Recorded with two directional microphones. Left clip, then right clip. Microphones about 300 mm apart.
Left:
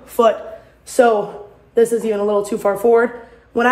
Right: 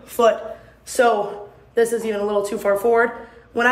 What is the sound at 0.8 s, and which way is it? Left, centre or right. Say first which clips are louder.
A woman's voice: left 3 dB; centre.